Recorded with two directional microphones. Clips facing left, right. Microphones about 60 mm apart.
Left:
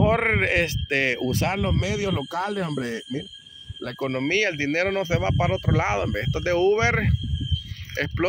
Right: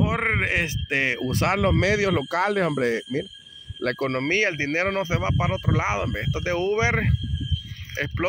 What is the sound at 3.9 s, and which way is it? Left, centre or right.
Speech, right.